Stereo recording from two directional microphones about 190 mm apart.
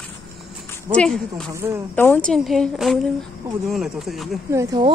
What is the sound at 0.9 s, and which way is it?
Speech, 5° left (ahead or behind).